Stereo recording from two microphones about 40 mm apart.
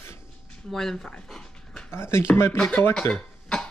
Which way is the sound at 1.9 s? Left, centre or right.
Left.